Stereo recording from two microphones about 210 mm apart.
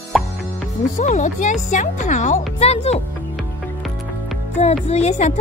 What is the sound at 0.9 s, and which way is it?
Speech, 35° left (ahead or behind).